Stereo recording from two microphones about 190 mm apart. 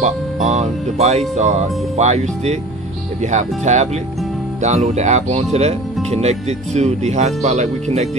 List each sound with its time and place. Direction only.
0.0 s speech: 35° right (ahead or behind)